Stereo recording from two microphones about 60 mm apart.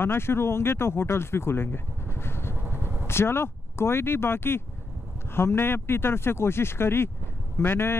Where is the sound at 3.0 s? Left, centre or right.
Left.